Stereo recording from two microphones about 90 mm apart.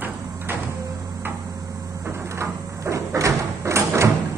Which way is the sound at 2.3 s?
30° right (ahead or behind).